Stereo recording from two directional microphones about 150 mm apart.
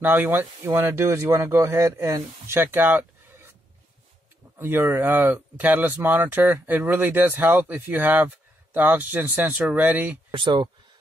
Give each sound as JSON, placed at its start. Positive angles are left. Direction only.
{"t": 0.0, "sound": "speech", "side_deg": -10}
{"t": 4.6, "sound": "speech", "side_deg": -15}
{"t": 10.3, "sound": "speech", "side_deg": -35}